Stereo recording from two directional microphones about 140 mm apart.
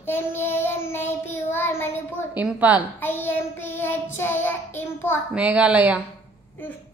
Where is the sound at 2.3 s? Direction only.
10° right (ahead or behind).